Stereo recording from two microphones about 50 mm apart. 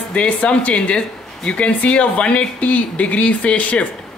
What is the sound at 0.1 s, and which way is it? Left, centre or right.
Speech, left.